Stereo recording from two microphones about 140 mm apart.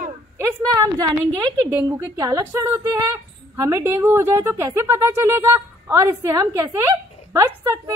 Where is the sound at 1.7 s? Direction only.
25° right (ahead or behind).